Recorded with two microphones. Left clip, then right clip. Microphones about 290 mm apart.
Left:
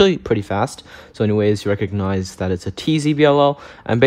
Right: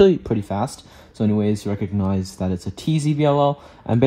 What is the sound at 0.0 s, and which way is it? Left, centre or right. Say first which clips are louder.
Speech: left 1 dB; right.